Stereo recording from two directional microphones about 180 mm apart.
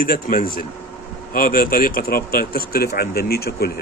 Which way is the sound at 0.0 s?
55° left (ahead or behind).